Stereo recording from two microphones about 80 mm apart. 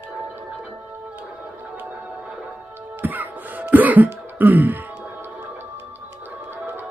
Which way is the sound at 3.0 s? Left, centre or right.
Right.